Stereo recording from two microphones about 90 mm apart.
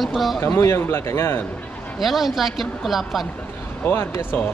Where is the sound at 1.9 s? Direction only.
Centre (ahead or behind).